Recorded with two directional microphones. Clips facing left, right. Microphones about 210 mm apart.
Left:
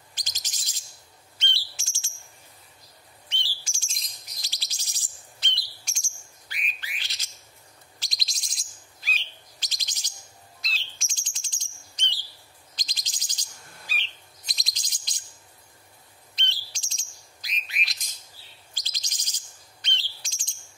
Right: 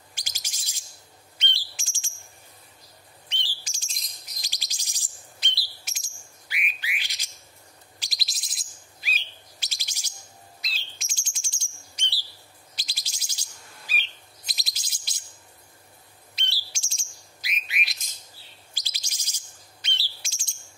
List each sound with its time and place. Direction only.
0.1 s bird: 10° right (ahead or behind)
1.4 s a sound: 15° right (ahead or behind)
3.6 s chirp: 15° right (ahead or behind)
6.5 s bird: 10° right (ahead or behind)
8.0 s chirp: 5° right (ahead or behind)
10.6 s bird: centre (ahead or behind)
12.7 s chirp: 10° right (ahead or behind)
16.3 s bird: 10° right (ahead or behind)
18.7 s a sound: 10° right (ahead or behind)
19.8 s bird: 10° right (ahead or behind)